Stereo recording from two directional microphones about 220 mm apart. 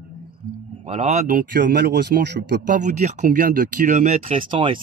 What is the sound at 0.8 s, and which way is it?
Speech, 30° right (ahead or behind).